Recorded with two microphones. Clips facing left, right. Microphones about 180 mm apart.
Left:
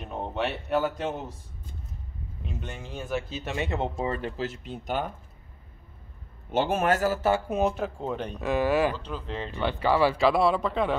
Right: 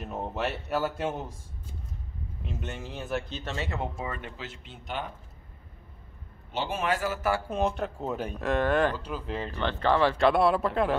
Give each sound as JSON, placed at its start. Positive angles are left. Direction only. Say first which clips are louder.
{"t": 0.0, "sound": "speech", "louder": "left 1 dB", "side_deg": -5}
{"t": 2.4, "sound": "speech", "louder": "right 1 dB", "side_deg": -5}
{"t": 3.5, "sound": "speech", "louder": "left 5 dB", "side_deg": 20}
{"t": 6.5, "sound": "a man's voice", "louder": "left 5 dB", "side_deg": 50}
{"t": 7.2, "sound": "speech", "louder": "left 4 dB", "side_deg": 25}
{"t": 7.4, "sound": "speech", "louder": "left 2 dB", "side_deg": 10}
{"t": 8.9, "sound": "speech", "louder": "right 1 dB", "side_deg": -10}
{"t": 9.6, "sound": "speech", "louder": "left 1 dB", "side_deg": 10}